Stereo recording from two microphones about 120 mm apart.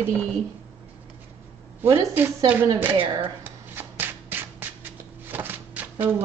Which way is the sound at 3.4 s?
15° right (ahead or behind).